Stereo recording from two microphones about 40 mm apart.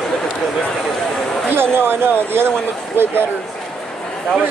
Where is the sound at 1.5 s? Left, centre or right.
Right.